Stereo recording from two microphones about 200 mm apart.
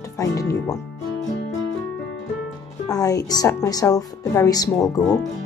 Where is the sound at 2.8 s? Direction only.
20° left (ahead or behind).